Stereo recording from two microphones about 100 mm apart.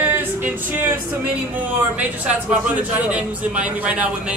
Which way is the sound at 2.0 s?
15° right (ahead or behind).